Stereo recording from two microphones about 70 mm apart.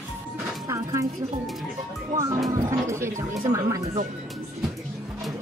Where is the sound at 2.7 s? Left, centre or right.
Right.